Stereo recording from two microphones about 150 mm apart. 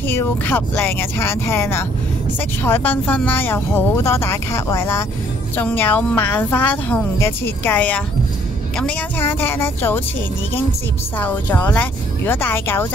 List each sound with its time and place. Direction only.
0.1 s speech: 15° left (ahead or behind)
11.1 s speech: 10° left (ahead or behind)